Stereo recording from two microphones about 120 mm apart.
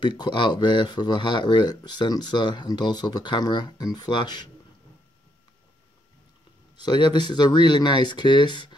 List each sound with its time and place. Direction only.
0.0 s speech: 35° left (ahead or behind)
6.8 s speech: 40° left (ahead or behind)